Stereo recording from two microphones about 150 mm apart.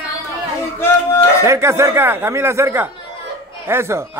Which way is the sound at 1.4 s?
20° right (ahead or behind).